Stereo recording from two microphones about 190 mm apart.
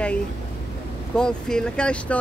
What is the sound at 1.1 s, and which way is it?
Speech, 5° left (ahead or behind).